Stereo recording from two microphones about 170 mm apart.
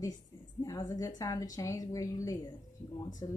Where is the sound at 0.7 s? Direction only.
20° left (ahead or behind).